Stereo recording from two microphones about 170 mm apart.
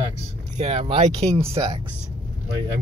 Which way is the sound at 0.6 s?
40° right (ahead or behind).